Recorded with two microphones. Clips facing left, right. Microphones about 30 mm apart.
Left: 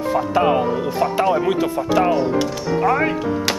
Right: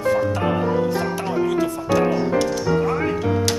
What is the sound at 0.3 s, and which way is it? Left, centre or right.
Speech, left.